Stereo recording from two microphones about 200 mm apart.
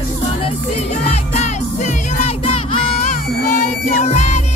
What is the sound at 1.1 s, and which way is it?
Music, 35° left (ahead or behind).